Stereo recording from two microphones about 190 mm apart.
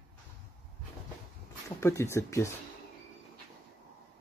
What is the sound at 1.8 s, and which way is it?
Speech, 15° left (ahead or behind).